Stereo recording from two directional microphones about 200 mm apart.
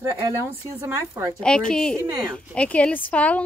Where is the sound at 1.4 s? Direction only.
5° left (ahead or behind).